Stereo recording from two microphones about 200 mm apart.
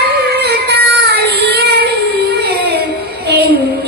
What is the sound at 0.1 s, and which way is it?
Child singing, 55° right (ahead or behind).